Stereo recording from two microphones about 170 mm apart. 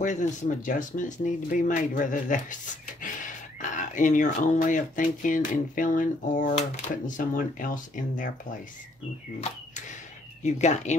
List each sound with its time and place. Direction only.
0.0 s speech: 45° left (ahead or behind)
10.4 s speech: 45° left (ahead or behind)